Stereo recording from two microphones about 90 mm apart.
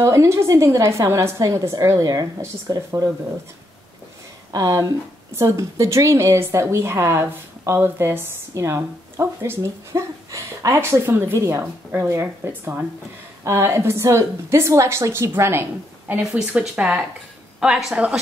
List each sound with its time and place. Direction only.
0.0 s a woman's voice: 35° right (ahead or behind)
4.5 s a woman's voice: 45° right (ahead or behind)
16.1 s speech: 15° right (ahead or behind)